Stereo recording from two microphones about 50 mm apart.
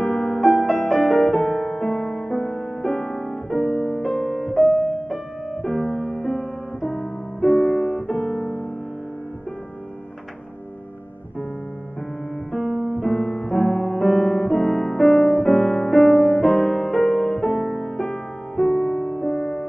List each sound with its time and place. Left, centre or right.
0.0 s music: centre
3.7 s music: centre
4.0 s music: centre
8.2 s piano: centre
12.5 s music: centre
12.8 s piano: centre
17.6 s music: centre